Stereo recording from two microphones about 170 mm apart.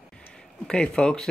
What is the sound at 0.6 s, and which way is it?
Speech, 5° left (ahead or behind).